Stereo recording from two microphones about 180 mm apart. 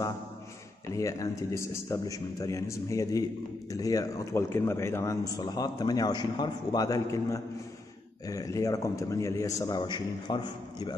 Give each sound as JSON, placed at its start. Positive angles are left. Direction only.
{"t": 0.9, "sound": "a man's voice", "side_deg": 20}